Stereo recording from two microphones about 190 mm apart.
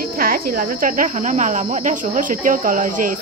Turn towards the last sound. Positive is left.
turn(degrees=-45)  # may be behind; listen again after turning